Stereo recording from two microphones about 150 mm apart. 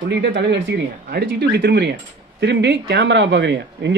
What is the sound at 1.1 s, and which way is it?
Speech, 90° right.